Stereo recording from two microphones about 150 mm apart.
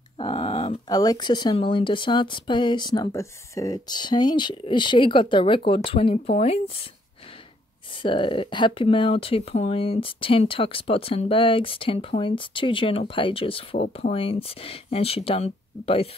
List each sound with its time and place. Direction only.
0.2 s a sound: 35° left (ahead or behind)
0.8 s speech: 25° left (ahead or behind); by 6.9 s 40° left (ahead or behind)
7.9 s speech: 35° left (ahead or behind)